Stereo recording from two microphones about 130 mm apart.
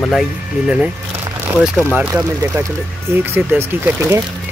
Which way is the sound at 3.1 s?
15° right (ahead or behind).